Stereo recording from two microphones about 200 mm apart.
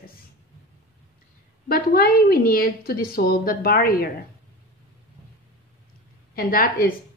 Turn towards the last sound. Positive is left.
turn(degrees=45)  # may be behind; listen again after turning